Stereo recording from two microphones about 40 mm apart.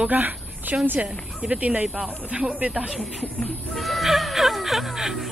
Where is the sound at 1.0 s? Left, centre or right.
Right.